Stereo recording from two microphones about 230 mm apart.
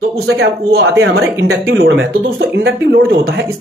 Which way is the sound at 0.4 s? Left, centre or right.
Right.